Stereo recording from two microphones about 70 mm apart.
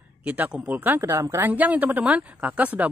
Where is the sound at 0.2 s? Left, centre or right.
Centre.